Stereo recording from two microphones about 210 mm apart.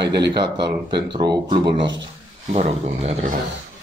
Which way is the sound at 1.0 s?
20° right (ahead or behind).